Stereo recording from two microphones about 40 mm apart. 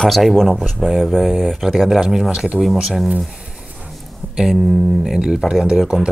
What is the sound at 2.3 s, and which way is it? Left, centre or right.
Speech, centre.